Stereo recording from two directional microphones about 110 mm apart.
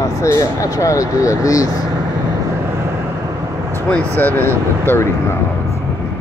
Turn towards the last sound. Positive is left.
turn(degrees=20)  # may be behind; listen again after turning